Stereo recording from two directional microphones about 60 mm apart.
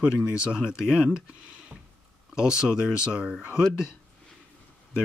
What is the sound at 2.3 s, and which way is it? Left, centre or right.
Speech, centre.